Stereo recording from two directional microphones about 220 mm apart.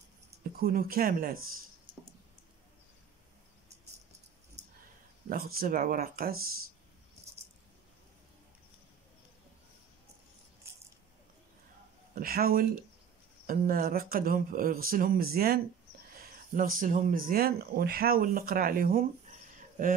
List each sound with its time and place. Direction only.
0.4 s speech: 40° right (ahead or behind)
5.3 s speech: 45° right (ahead or behind)
12.2 s speech: 40° right (ahead or behind)